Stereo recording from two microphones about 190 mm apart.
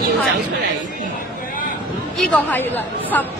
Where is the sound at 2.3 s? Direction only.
10° left (ahead or behind).